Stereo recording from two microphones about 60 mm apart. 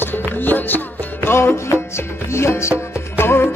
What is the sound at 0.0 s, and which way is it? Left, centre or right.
Music, left.